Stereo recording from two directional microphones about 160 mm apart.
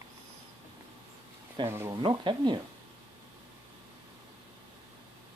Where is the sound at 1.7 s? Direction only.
15° right (ahead or behind).